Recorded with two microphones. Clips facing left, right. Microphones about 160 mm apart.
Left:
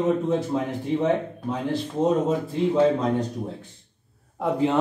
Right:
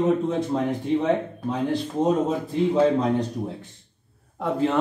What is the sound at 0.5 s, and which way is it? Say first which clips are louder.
Speech: right 1 dB; 20° right (ahead or behind).